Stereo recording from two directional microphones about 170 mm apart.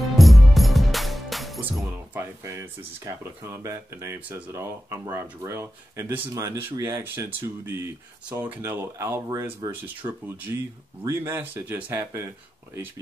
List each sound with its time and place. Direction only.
0.2 s music: centre (ahead or behind)
1.7 s speech: 10° right (ahead or behind)